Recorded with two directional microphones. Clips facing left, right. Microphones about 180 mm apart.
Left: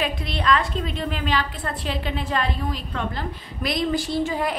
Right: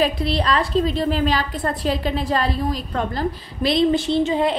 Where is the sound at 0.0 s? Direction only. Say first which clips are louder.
Right 5 dB; 35° right (ahead or behind).